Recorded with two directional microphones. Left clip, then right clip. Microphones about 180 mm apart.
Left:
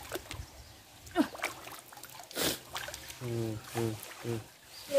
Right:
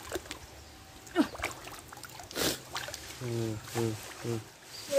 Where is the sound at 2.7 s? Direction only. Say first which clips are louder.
Right 2 dB; 30° left (ahead or behind).